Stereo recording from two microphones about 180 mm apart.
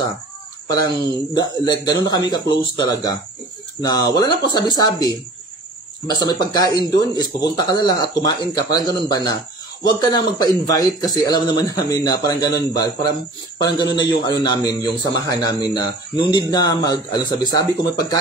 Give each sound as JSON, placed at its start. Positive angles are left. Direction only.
{"t": 0.7, "sound": "a man's voice", "side_deg": 20}